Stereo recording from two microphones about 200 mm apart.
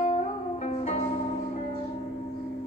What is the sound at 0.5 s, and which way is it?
Music, 35° left (ahead or behind).